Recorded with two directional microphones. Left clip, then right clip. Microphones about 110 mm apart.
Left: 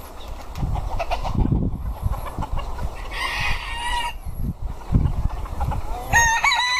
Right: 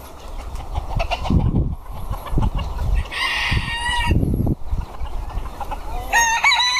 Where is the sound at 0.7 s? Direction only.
Centre (ahead or behind).